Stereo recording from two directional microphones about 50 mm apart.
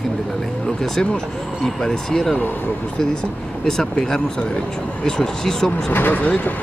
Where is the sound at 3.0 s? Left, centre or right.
Centre.